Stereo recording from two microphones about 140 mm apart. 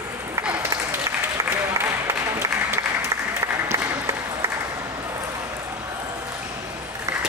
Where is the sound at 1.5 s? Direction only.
20° right (ahead or behind).